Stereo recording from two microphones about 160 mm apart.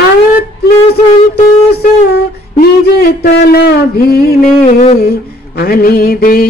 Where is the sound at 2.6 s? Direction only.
75° left (ahead or behind).